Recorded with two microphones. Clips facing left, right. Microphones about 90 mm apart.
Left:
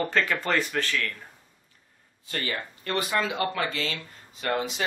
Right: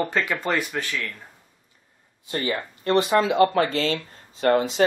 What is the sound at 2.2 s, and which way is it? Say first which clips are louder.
Speech: right 5 dB; 25° right (ahead or behind).